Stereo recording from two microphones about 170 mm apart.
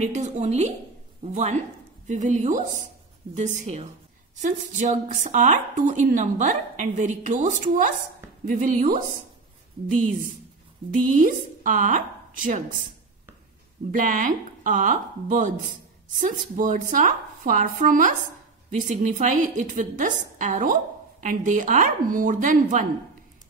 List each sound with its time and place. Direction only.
0.0 s a woman's voice: 45° right (ahead or behind)
10.9 s speech: 50° right (ahead or behind)
13.9 s a woman's voice: 50° right (ahead or behind)